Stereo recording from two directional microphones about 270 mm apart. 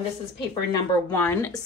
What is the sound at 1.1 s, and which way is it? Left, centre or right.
Speech, centre.